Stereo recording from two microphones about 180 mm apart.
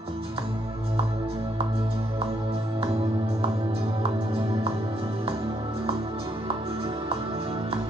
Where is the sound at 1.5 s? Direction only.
30° right (ahead or behind).